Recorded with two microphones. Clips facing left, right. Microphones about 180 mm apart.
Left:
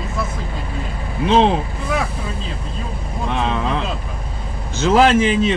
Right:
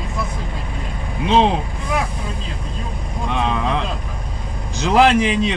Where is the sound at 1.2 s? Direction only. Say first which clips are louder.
Left 1 dB; centre (ahead or behind).